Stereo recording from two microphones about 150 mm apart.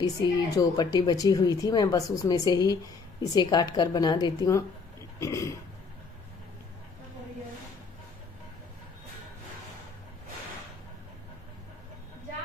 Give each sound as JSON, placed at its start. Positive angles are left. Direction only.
{"t": 0.0, "sound": "speech", "side_deg": 25}